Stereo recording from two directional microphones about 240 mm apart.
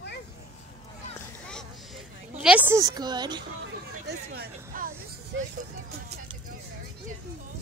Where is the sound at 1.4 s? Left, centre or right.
Centre.